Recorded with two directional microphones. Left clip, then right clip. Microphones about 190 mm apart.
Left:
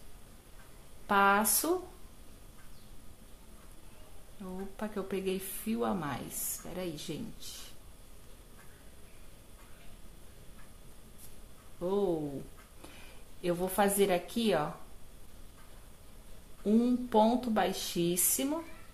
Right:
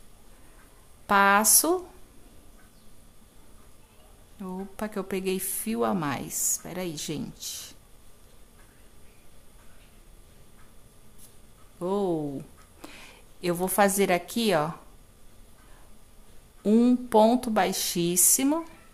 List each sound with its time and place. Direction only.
1.0 s a woman's voice: 25° right (ahead or behind)
4.4 s a woman's voice: 30° right (ahead or behind)
11.8 s a woman's voice: 30° right (ahead or behind)
16.6 s speech: 35° right (ahead or behind)